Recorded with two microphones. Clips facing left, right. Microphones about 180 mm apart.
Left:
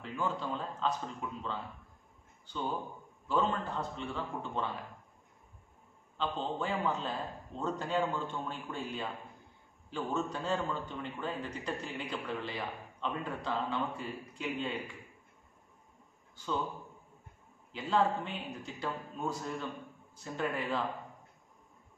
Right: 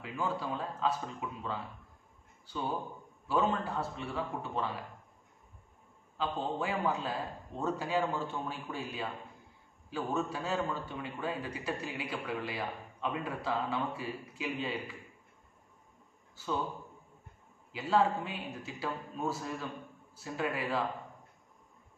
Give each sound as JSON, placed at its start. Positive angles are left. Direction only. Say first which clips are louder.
{"t": 0.0, "sound": "a man's voice", "louder": "even", "side_deg": -10}
{"t": 2.5, "sound": "a man's voice", "louder": "right 1 dB", "side_deg": -5}
{"t": 6.1, "sound": "a man's voice", "louder": "right 1 dB", "side_deg": -10}
{"t": 16.4, "sound": "a man's voice", "louder": "right 1 dB", "side_deg": -5}
{"t": 17.7, "sound": "a man's voice", "louder": "right 1 dB", "side_deg": -5}